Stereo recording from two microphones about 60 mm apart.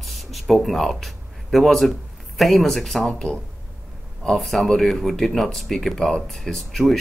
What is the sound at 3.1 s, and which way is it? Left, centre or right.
Speech, left.